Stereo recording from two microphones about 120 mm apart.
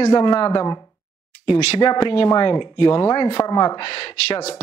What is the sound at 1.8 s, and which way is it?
Speech, 40° left (ahead or behind).